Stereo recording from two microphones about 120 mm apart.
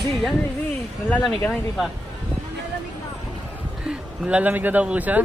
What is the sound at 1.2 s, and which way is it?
Speech, 5° left (ahead or behind).